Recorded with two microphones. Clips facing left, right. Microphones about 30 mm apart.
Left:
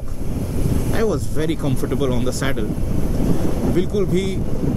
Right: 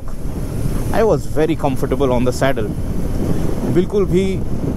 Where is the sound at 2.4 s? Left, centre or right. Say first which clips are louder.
Right 7 dB; right.